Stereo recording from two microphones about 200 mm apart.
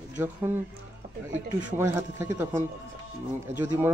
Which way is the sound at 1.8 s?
15° right (ahead or behind).